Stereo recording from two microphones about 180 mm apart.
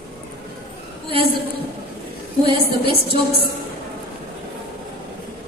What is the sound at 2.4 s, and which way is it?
Speech, 30° right (ahead or behind).